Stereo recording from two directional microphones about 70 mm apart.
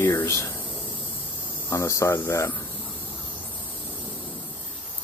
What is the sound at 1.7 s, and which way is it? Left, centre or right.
Speech, left.